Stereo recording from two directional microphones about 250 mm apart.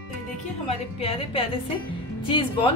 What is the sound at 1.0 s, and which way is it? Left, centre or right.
A woman's voice, left.